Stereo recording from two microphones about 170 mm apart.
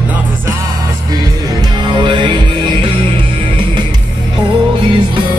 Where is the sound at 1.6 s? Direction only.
25° right (ahead or behind).